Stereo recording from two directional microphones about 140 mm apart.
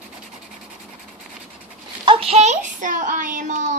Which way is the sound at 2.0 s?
45° right (ahead or behind).